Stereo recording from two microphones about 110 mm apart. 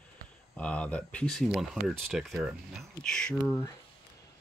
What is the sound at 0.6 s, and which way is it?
Speech, 10° left (ahead or behind).